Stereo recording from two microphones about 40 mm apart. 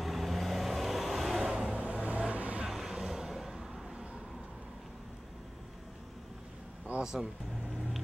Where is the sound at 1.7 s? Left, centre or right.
Right.